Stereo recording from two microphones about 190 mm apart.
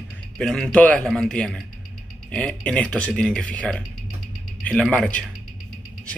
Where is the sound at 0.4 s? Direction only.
5° left (ahead or behind).